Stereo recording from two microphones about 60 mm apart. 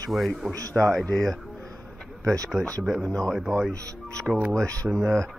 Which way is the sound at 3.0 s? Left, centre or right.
Centre.